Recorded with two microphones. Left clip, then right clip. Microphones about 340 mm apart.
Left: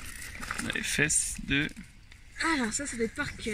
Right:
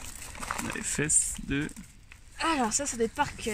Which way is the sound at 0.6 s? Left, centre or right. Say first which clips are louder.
Left 7 dB; centre.